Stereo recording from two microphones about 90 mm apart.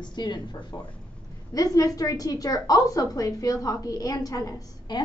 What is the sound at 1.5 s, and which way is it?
A woman's voice, 40° left (ahead or behind).